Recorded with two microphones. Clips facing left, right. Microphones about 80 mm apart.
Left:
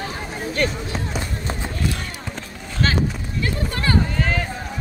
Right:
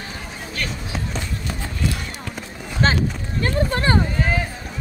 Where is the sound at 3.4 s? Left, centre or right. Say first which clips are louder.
Right 4 dB; right.